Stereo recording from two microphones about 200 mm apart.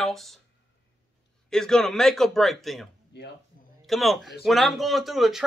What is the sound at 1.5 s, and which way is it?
Speech, 5° left (ahead or behind).